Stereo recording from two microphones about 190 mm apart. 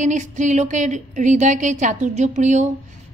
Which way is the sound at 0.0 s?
40° right (ahead or behind).